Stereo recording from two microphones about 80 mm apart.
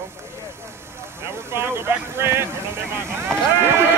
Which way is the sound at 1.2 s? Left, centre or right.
Right.